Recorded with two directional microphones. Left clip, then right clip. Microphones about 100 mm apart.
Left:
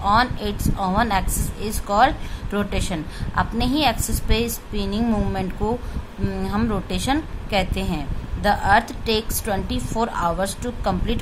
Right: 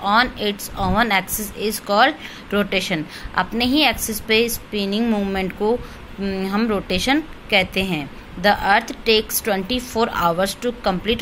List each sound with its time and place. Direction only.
0.0 s speech: 20° right (ahead or behind)